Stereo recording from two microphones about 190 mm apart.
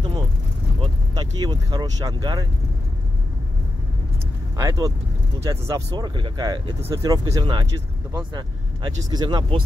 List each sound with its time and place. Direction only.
0.7 s speech: 20° right (ahead or behind)
4.6 s speech: 20° right (ahead or behind)